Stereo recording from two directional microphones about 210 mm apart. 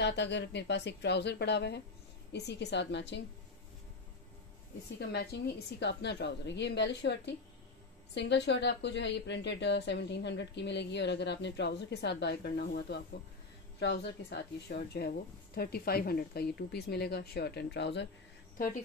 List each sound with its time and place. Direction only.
0.0 s a woman's voice: 55° left (ahead or behind)
4.9 s a woman's voice: 50° left (ahead or behind)